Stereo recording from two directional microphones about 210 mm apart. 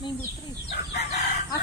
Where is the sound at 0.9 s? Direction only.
50° left (ahead or behind).